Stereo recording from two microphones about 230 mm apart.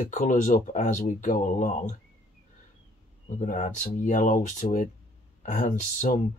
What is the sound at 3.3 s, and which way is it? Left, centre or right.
Speech, left.